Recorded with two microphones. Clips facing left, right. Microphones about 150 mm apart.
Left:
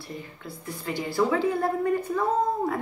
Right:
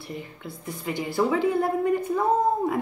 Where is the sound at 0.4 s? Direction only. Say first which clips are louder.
Right 1 dB; 20° right (ahead or behind).